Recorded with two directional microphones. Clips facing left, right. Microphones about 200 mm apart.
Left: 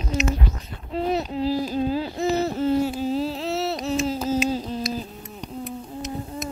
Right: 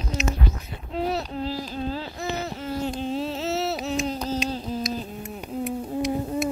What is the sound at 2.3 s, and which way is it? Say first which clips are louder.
Owl: left 8 dB; 40° left (ahead or behind).